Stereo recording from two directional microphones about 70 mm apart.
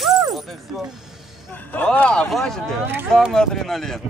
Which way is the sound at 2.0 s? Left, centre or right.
Centre.